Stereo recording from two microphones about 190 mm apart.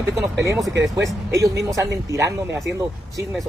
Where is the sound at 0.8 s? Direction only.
15° right (ahead or behind).